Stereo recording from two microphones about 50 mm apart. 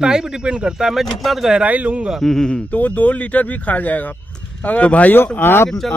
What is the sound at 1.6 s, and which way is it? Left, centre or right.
Speech, right.